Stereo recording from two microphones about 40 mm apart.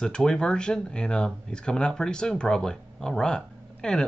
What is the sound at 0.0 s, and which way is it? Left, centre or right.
Speech, centre.